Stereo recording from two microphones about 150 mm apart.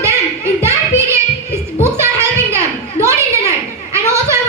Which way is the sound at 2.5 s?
20° right (ahead or behind).